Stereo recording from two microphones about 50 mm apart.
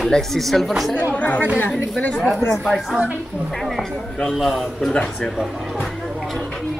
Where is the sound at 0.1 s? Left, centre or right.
Centre.